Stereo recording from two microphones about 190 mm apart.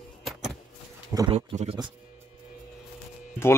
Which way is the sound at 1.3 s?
35° right (ahead or behind).